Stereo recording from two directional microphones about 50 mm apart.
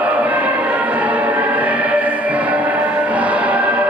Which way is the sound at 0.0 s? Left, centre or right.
Right.